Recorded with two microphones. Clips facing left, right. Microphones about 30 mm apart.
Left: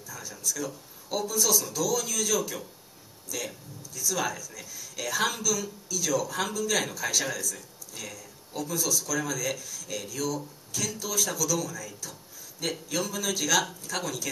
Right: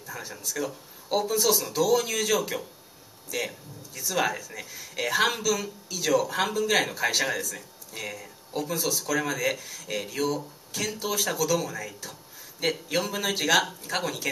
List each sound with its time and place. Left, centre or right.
0.0 s speech: right
12.0 s a sound: right
12.9 s speech: right